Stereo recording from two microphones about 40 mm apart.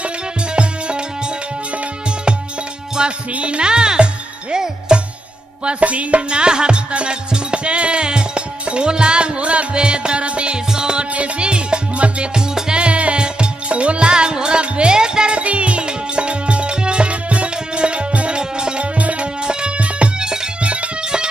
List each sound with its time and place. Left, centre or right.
0.6 s music: right
3.0 s music: centre
3.3 s speech: right
5.7 s music: right
6.4 s music: right
18.9 s music: right
19.4 s music: right